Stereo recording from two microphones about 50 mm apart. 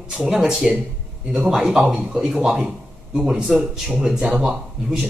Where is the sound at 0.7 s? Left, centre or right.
Centre.